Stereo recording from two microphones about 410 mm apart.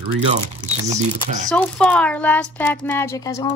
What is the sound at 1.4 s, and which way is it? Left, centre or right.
Speech, centre.